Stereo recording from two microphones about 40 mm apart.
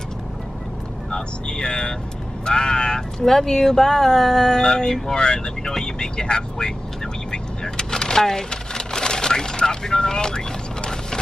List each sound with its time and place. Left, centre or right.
1.1 s speech: centre
7.2 s vehicle: centre